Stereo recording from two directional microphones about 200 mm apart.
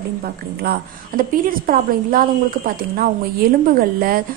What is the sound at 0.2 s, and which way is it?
A woman's voice, 50° right (ahead or behind).